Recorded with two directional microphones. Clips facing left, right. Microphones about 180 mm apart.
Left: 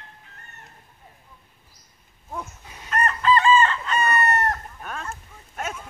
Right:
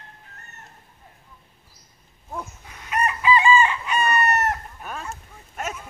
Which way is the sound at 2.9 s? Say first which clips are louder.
Even; 10° right (ahead or behind).